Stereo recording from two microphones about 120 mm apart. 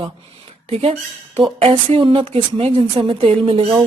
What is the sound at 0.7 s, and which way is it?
A woman's voice, 55° right (ahead or behind).